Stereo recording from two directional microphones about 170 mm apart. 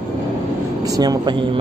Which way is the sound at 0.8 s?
20° right (ahead or behind).